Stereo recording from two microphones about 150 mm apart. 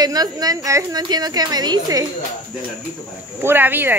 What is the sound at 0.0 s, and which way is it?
A woman's voice, 25° right (ahead or behind).